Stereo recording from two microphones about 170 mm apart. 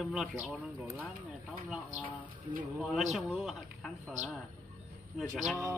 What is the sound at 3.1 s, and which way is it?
Speech, centre (ahead or behind).